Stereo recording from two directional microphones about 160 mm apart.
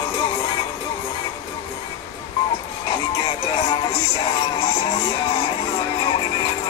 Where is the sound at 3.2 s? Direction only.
25° left (ahead or behind).